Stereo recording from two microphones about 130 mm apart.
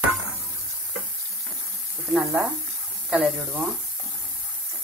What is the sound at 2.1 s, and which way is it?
Speech, 5° right (ahead or behind).